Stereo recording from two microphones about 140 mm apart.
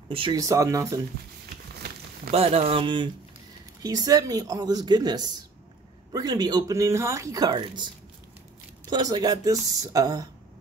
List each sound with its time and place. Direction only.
0.1 s speech: 35° right (ahead or behind)
0.4 s speech: 25° right (ahead or behind)
2.3 s speech: 45° right (ahead or behind)
8.9 s speech: 30° right (ahead or behind)